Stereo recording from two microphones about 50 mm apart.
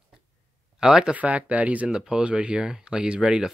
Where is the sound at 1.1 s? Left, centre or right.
Right.